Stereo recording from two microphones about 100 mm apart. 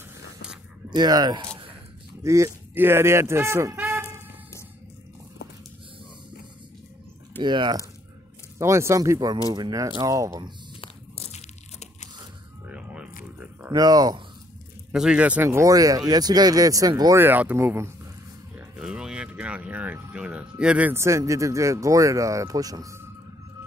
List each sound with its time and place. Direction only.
0.8 s speech: 45° right (ahead or behind)
2.2 s speech: 30° right (ahead or behind)
3.7 s a sound: 20° right (ahead or behind)
7.4 s speech: 50° right (ahead or behind)
8.5 s speech: 30° right (ahead or behind)
10.8 s crushing: 85° left
12.6 s a sound: 10° right (ahead or behind)
13.7 s speech: 40° right (ahead or behind)
14.9 s speech: 10° right (ahead or behind)
15.4 s speech: 30° right (ahead or behind)
17.1 s speech: 20° right (ahead or behind)
18.5 s a sound: 10° right (ahead or behind)
20.1 s speech: 15° right (ahead or behind)
20.9 s speech: 30° right (ahead or behind)